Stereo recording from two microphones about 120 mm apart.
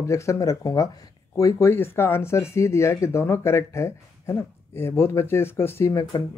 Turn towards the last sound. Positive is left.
turn(degrees=30)  # may be behind; listen again after turning